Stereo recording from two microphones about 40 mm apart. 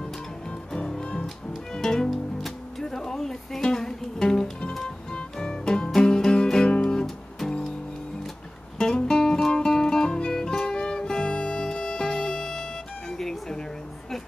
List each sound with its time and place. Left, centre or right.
0.7 s music: left
8.7 s music: centre
13.2 s a sound: centre